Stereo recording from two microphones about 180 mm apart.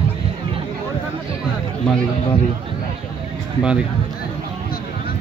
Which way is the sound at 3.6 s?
5° right (ahead or behind).